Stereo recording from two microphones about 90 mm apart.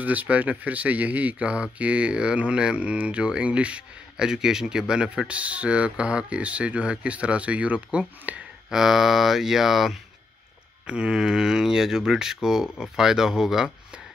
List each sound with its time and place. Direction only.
0.0 s speech: 15° right (ahead or behind)
8.6 s speech: 5° right (ahead or behind)